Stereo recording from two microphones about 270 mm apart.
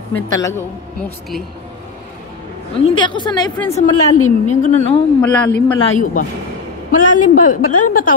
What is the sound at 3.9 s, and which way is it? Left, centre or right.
Speech, left.